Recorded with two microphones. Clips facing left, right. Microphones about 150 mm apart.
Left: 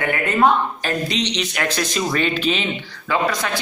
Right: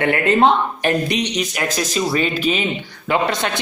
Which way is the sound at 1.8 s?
5° right (ahead or behind).